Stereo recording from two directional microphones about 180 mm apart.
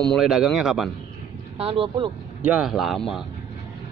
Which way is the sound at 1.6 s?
30° right (ahead or behind).